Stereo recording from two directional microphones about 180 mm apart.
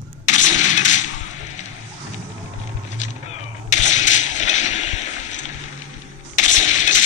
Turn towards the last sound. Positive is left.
turn(degrees=45)  # may be behind; listen again after turning